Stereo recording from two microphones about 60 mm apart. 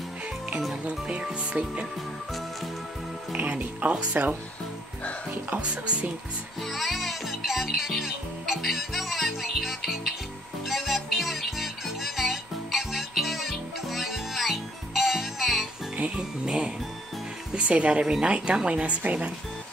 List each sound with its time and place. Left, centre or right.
0.8 s speech: right
3.3 s speech: right
6.6 s speech: centre
10.7 s music: centre
16.0 s speech: centre